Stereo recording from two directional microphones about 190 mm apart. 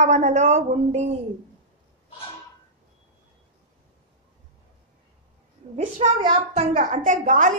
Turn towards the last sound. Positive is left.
turn(degrees=-45)  # may be behind; listen again after turning